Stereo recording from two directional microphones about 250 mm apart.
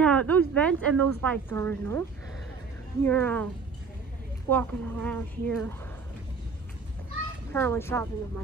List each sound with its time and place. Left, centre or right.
0.0 s speech: centre
0.7 s a woman's voice: right
1.2 s speech: centre
4.5 s speech: centre
7.5 s speech: centre